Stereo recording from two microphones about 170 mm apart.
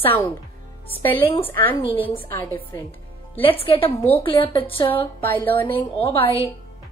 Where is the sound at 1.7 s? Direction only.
30° left (ahead or behind).